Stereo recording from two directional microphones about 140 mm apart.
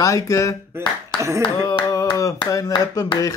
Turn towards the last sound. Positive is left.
turn(degrees=25)  # may be behind; listen again after turning